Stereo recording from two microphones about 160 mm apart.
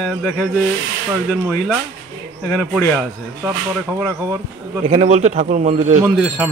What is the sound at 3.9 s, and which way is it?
Speech, 15° right (ahead or behind).